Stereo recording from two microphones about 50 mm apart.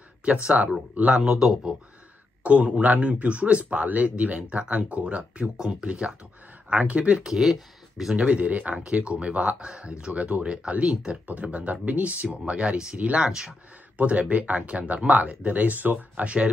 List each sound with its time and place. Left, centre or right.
0.2 s a man's voice: right
2.4 s a man's voice: right
7.2 s speech: centre
8.2 s a man's voice: right
8.7 s a man's voice: centre
13.2 s speech: centre
13.5 s a man's voice: right